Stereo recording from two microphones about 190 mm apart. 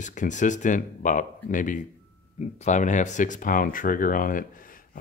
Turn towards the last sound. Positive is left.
turn(degrees=45)  # may be behind; listen again after turning